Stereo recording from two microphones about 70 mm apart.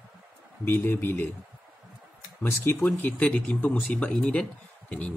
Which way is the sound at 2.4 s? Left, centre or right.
Left.